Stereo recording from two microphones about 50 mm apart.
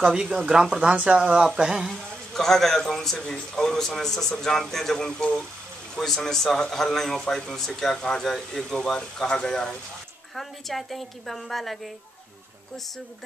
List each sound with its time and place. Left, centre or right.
0.0 s speech: centre
2.3 s speech: centre
10.3 s a woman's voice: centre